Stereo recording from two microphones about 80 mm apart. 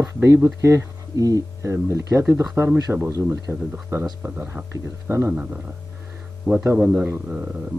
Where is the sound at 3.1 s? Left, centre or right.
Right.